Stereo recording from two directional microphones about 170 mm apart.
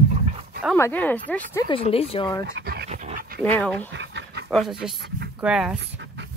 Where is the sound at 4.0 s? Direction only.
90° right.